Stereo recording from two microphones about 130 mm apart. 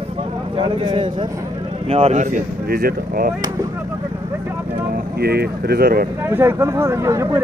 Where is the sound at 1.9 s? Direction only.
50° right (ahead or behind).